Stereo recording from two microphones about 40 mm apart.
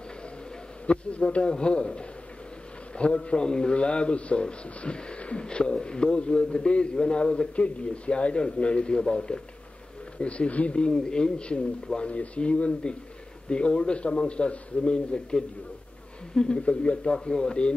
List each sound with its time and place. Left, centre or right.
0.8 s a man's voice: left
10.8 s a man's voice: centre
16.3 s a man's voice: left